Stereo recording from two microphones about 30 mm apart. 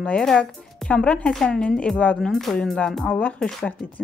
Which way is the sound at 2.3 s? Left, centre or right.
Centre.